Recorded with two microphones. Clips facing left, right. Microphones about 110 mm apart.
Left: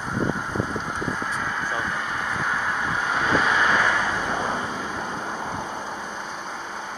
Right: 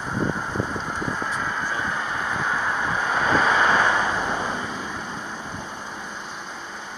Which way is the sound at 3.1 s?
40° right (ahead or behind).